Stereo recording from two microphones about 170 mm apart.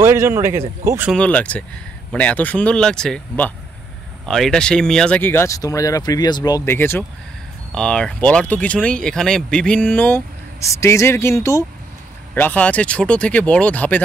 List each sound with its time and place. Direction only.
0.0 s speech: 15° right (ahead or behind)
1.1 s speech: 5° left (ahead or behind)